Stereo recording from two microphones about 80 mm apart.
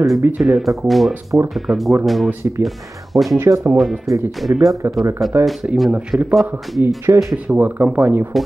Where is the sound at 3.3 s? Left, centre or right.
Right.